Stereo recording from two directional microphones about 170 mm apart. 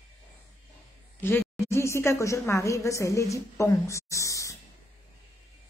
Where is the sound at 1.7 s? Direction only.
15° left (ahead or behind).